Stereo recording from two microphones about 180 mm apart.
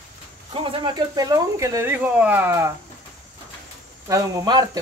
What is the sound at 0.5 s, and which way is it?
Speech, 30° right (ahead or behind).